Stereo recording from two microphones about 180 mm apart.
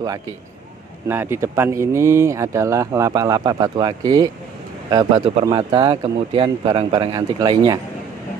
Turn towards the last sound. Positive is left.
turn(degrees=-20)  # may be behind; listen again after turning